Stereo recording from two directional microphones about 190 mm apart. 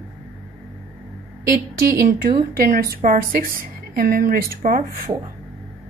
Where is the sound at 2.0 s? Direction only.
50° right (ahead or behind).